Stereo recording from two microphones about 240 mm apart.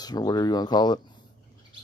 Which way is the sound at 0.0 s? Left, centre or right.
Centre.